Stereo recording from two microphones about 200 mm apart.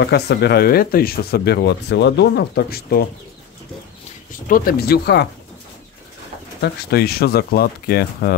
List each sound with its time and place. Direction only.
0.0 s speech: 55° left (ahead or behind)
4.5 s speech: 45° left (ahead or behind)
6.6 s speech: 50° left (ahead or behind)